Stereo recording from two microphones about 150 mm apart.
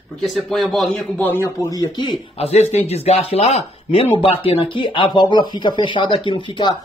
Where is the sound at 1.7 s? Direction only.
25° left (ahead or behind).